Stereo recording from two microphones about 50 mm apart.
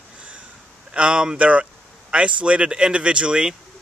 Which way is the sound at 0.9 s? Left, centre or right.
Centre.